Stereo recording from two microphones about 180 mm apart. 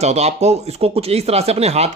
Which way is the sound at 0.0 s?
40° right (ahead or behind).